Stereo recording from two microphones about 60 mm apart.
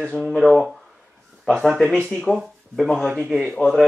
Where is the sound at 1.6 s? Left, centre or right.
Centre.